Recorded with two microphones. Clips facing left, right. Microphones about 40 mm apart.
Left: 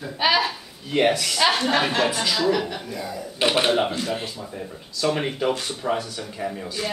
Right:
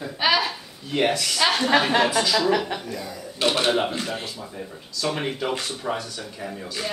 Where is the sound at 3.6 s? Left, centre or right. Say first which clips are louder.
Left 1 dB; centre.